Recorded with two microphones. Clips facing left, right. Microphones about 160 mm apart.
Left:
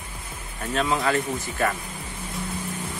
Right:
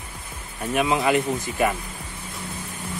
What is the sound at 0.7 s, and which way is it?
Speech, 15° right (ahead or behind).